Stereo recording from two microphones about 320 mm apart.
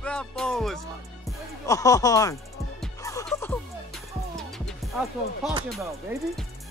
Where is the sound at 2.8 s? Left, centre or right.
Centre.